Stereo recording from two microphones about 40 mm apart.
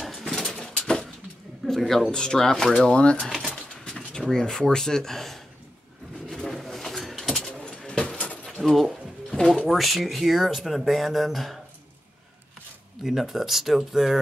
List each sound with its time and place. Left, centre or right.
0.0 s pigeon: centre
0.7 s a sound: centre
1.7 s speech: centre
2.0 s speech: centre
2.8 s speech: left
3.3 s speech: centre
3.7 s a sound: centre
4.4 s speech: centre
6.3 s pigeon: centre
7.1 s a sound: centre
7.6 s keys jangling: left
8.6 s a sound: centre
9.7 s speech: centre
13.0 s speech: centre